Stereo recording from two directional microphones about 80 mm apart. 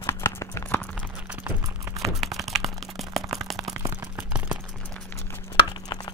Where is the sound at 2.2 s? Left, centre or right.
Centre.